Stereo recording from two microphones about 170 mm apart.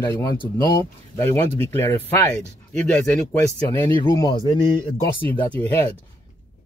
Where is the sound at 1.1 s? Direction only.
15° left (ahead or behind).